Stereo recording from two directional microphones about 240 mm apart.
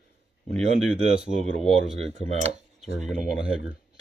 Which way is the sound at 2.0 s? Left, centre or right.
Right.